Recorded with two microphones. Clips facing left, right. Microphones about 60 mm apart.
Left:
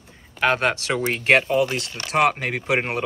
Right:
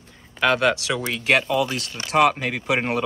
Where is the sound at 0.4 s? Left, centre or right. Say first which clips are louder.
Right 1 dB; left.